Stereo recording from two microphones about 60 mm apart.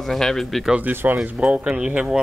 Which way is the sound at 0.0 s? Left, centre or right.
Centre.